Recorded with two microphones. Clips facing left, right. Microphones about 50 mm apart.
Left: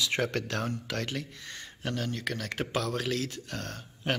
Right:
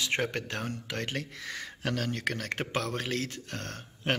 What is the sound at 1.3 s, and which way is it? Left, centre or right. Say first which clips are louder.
Speech: right 5 dB; right.